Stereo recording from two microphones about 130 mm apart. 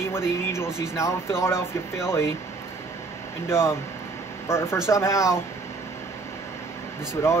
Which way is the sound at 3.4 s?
20° left (ahead or behind).